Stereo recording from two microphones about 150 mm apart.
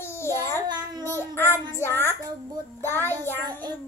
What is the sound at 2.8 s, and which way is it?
Child singing, 15° left (ahead or behind).